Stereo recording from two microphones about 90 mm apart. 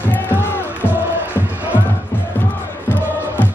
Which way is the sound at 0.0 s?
20° left (ahead or behind).